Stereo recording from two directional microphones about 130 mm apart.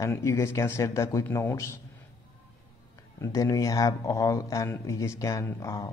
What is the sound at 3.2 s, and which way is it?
A man's voice, 25° left (ahead or behind).